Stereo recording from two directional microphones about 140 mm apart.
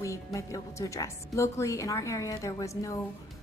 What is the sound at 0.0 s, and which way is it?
A woman's voice, 20° left (ahead or behind).